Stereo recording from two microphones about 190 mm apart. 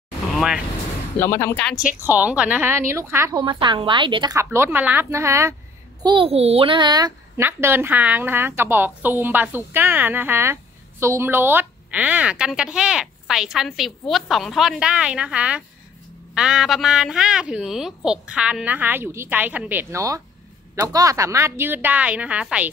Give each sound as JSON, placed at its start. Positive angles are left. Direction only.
{"t": 0.3, "sound": "vehicle", "side_deg": 0}
{"t": 1.2, "sound": "speech", "side_deg": 15}
{"t": 2.0, "sound": "a woman's voice", "side_deg": -10}
{"t": 6.0, "sound": "a child's voice", "side_deg": -30}